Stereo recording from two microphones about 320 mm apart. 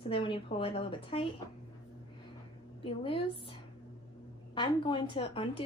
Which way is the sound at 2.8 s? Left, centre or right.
Centre.